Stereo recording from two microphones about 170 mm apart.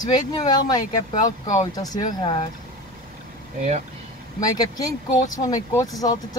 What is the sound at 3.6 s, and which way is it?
Speech, 45° right (ahead or behind).